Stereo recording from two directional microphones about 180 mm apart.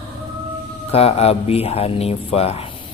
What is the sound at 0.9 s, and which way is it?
A man's voice, 35° left (ahead or behind).